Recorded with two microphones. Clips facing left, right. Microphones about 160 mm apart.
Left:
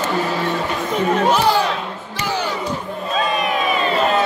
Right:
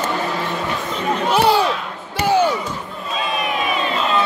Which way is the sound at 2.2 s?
60° right (ahead or behind).